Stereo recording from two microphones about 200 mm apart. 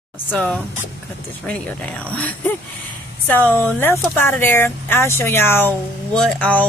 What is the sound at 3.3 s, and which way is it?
Speech, 10° left (ahead or behind).